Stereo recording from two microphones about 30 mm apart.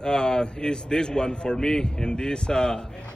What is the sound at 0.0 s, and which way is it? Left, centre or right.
A man's voice, left.